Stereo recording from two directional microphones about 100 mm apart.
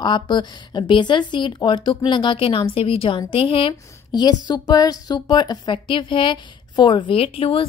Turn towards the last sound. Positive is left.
turn(degrees=70)  # may be behind; listen again after turning